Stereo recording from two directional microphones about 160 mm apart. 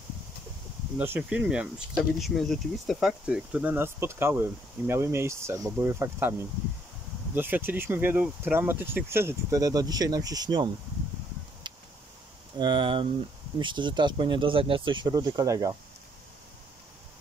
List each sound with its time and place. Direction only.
0.9 s speech: 10° right (ahead or behind)
7.3 s speech: 10° right (ahead or behind)
11.6 s a sound: 30° right (ahead or behind)
12.5 s speech: 30° right (ahead or behind)